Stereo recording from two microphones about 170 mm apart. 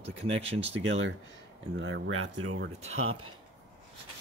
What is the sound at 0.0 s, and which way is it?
Speech, 35° right (ahead or behind).